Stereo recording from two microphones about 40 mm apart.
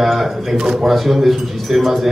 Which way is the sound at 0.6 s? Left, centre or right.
Centre.